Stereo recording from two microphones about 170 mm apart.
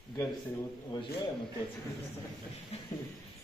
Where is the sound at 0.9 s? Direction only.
25° left (ahead or behind).